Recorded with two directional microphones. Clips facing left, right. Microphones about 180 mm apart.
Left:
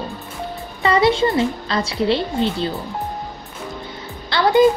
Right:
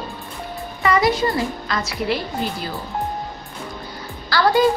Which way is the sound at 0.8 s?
30° left (ahead or behind).